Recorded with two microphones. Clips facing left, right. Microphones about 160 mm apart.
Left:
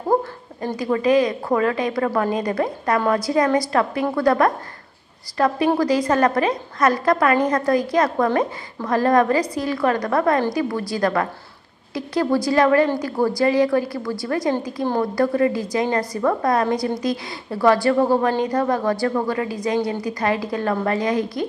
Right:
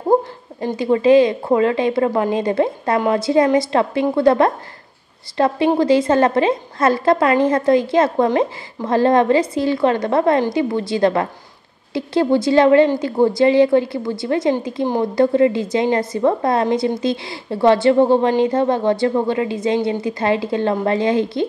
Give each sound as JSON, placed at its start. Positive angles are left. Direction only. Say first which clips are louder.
{"t": 0.1, "sound": "a woman's voice", "louder": "right 4 dB", "side_deg": -25}